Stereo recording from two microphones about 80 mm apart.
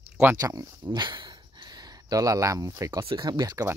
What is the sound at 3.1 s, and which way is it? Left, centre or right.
Speech, right.